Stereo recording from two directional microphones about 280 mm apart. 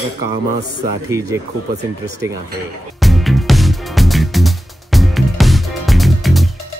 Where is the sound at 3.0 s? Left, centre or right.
Centre.